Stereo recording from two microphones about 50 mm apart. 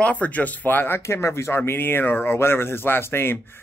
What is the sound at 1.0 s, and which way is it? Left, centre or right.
Speech, left.